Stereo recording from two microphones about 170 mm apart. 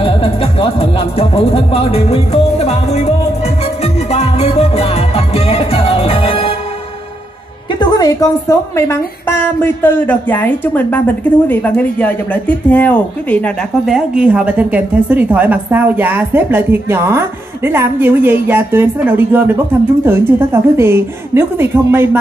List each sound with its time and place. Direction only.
0.0 s speech: 30° left (ahead or behind)
3.8 s music: 40° left (ahead or behind)
7.8 s a woman's voice: 20° left (ahead or behind)
13.8 s a woman's voice: 5° right (ahead or behind)